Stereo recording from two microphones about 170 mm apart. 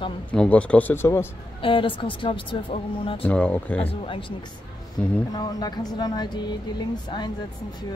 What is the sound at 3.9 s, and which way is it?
Speech, 30° left (ahead or behind).